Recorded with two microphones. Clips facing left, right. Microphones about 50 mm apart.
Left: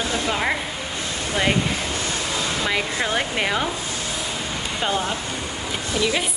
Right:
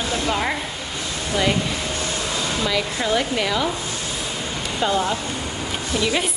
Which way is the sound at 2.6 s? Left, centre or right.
Left.